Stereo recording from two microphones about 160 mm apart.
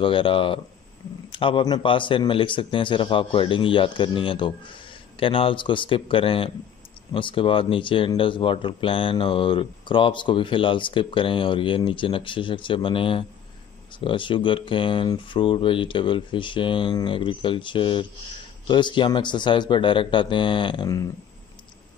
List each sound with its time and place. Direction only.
0.0 s a man's voice: 35° left (ahead or behind)